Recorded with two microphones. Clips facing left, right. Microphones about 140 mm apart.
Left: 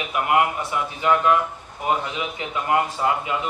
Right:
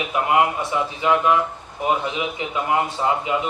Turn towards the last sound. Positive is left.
turn(degrees=-25)  # may be behind; listen again after turning